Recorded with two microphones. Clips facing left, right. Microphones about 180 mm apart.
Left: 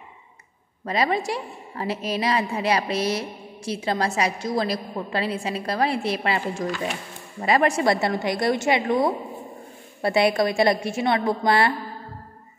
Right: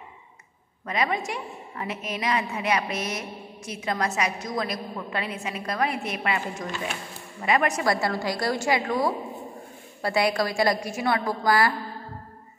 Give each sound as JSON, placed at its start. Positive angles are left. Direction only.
{"t": 0.8, "sound": "a woman's voice", "side_deg": 35}